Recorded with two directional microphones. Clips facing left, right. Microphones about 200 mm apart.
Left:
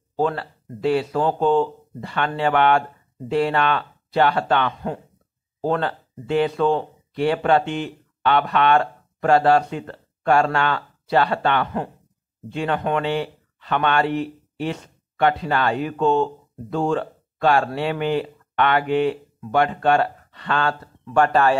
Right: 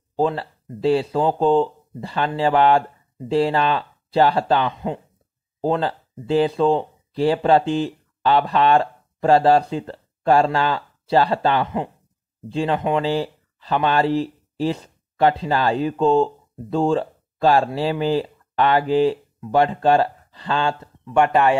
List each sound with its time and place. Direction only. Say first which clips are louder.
0.1 s speech: right 1 dB; 30° right (ahead or behind)